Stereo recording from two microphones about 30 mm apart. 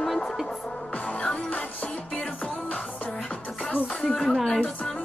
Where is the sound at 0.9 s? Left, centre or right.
Left.